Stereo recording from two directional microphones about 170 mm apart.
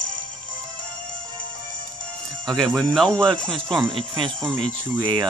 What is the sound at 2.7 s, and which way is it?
Speech, 5° left (ahead or behind).